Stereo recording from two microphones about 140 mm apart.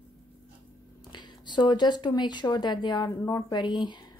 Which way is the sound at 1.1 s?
30° left (ahead or behind).